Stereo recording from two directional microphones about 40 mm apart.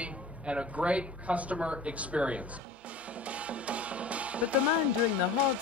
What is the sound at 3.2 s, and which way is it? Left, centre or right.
Music, right.